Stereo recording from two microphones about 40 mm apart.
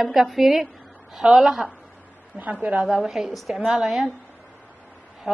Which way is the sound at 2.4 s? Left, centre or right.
Right.